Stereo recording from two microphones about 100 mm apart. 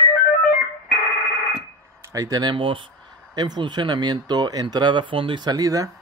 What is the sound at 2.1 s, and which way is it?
Speech, 35° right (ahead or behind).